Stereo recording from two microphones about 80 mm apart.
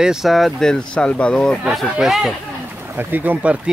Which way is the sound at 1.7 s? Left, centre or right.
Centre.